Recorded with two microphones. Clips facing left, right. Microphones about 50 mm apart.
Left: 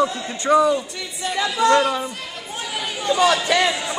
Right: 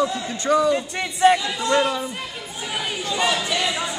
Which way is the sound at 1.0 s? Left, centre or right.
Right.